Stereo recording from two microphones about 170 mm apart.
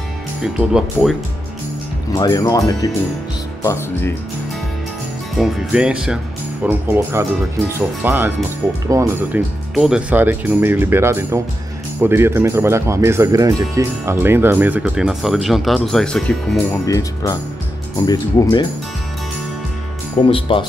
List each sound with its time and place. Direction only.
0.4 s speech: 5° right (ahead or behind)
2.1 s speech: 20° left (ahead or behind)
5.4 s speech: 5° right (ahead or behind)
9.8 s speech: 5° right (ahead or behind)
16.8 s speech: 20° left (ahead or behind)
20.2 s speech: 30° left (ahead or behind)